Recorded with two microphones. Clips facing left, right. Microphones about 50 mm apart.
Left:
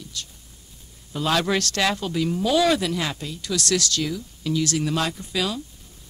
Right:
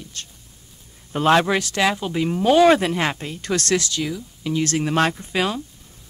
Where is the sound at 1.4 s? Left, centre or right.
Centre.